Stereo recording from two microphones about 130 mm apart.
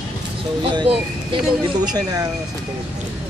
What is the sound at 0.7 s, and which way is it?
Speech, 40° right (ahead or behind).